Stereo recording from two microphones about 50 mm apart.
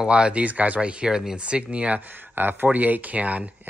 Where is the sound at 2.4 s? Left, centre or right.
Right.